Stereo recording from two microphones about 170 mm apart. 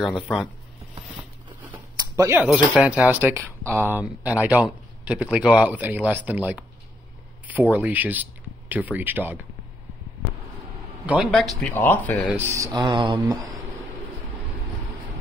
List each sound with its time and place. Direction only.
0.0 s speech: 5° right (ahead or behind)
1.6 s a man's voice: 15° right (ahead or behind)
7.7 s speech: 10° right (ahead or behind)
11.1 s speech: 5° right (ahead or behind)
12.3 s a man's voice: 15° right (ahead or behind)
12.7 s mantra: 25° right (ahead or behind)